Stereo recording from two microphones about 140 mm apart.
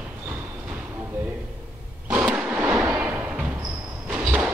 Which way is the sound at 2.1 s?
10° right (ahead or behind).